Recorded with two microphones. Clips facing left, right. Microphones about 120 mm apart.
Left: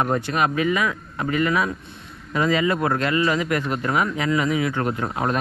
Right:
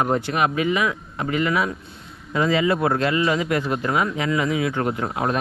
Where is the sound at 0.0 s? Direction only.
20° right (ahead or behind).